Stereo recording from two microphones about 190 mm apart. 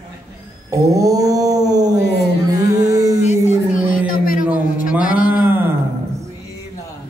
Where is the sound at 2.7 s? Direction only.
20° right (ahead or behind).